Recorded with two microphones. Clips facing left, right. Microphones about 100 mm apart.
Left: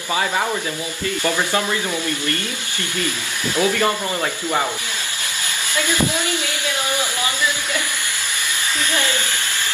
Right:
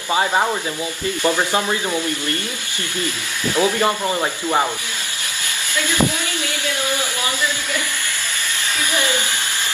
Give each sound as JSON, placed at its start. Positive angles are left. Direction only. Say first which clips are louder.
{"t": 0.1, "sound": "speech", "louder": "right 3 dB", "side_deg": -30}
{"t": 1.2, "sound": "speech", "louder": "right 2 dB", "side_deg": -20}
{"t": 3.5, "sound": "speech", "louder": "right 1 dB", "side_deg": -20}
{"t": 5.8, "sound": "speech", "louder": "right 1 dB", "side_deg": 20}
{"t": 8.9, "sound": "speech", "louder": "right 3 dB", "side_deg": -15}